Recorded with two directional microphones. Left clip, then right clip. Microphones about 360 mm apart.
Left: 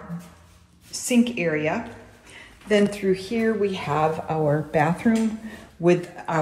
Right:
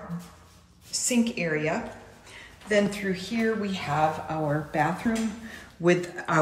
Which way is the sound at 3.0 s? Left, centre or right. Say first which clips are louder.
Left 5 dB; centre.